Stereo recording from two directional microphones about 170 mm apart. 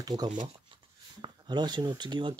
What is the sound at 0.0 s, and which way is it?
Speech, 25° right (ahead or behind).